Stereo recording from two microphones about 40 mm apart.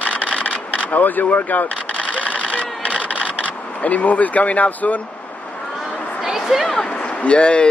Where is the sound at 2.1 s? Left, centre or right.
Left.